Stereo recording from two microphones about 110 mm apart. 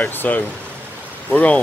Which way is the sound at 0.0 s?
15° left (ahead or behind).